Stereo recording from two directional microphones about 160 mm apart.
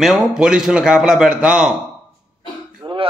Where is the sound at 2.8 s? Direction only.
30° right (ahead or behind).